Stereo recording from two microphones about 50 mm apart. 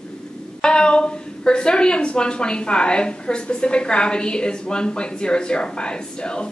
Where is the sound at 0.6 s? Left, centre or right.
Centre.